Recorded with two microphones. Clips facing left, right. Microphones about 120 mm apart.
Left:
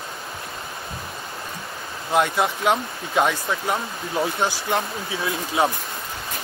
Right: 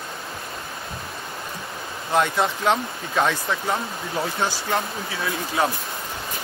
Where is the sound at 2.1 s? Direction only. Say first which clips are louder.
Left 1 dB; 10° left (ahead or behind).